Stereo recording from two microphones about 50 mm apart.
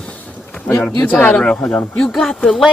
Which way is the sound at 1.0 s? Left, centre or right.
Left.